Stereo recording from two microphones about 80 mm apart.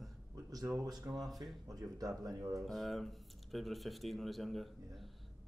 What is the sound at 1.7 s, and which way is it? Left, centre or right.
Speech, right.